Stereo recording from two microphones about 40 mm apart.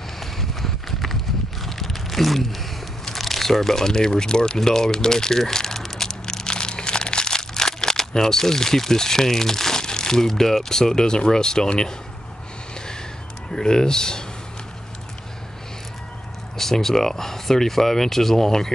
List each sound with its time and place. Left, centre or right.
0.2 s clip-clop: centre
1.6 s a sound: centre
4.6 s speech: centre
13.5 s speech: centre
16.5 s speech: centre